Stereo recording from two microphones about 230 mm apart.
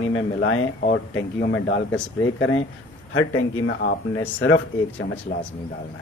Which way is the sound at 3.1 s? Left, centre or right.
Left.